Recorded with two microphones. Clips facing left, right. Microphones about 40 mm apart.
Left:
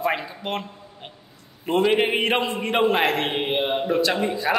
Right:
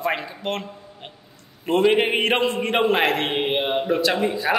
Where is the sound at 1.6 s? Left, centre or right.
Centre.